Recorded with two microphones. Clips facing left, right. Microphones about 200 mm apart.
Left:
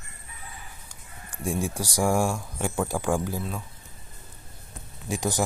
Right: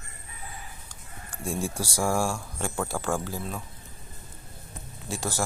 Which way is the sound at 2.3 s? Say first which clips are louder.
Left 2 dB; 10° left (ahead or behind).